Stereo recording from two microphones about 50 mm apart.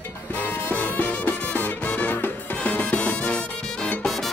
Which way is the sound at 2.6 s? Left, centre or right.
Left.